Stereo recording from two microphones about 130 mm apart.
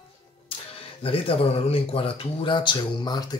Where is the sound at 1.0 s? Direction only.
45° left (ahead or behind).